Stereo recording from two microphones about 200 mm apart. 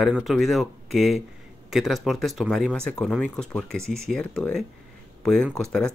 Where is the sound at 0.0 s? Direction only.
Centre (ahead or behind).